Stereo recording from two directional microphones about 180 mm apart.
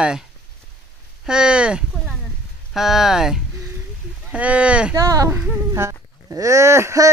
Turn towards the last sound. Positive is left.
turn(degrees=-15)  # may be behind; listen again after turning